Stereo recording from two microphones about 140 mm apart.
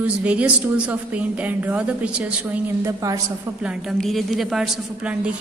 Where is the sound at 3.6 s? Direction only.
Centre (ahead or behind).